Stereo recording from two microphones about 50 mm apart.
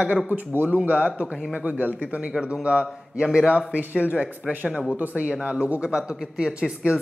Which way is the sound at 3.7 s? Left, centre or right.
Right.